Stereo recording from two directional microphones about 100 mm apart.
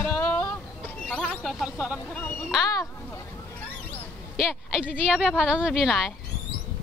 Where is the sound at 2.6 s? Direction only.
35° left (ahead or behind).